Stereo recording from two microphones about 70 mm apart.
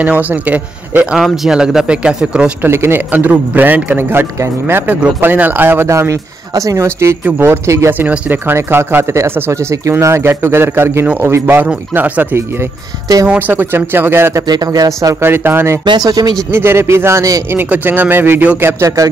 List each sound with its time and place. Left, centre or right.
0.0 s a man's voice: right
1.1 s a man's voice: centre
2.6 s speech: right
3.1 s a man's voice: right
5.9 s speech: right
8.1 s a man's voice: right
14.5 s speech: right
15.2 s speech: right
15.8 s speech: right
16.5 s speech: right
17.6 s a man's voice: right